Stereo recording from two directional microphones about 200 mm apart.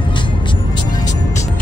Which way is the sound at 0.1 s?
20° left (ahead or behind).